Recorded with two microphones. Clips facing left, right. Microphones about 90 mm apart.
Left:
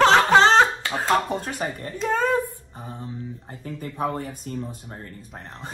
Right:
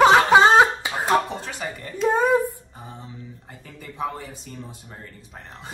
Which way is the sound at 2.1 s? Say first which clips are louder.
Right 2 dB; 20° right (ahead or behind).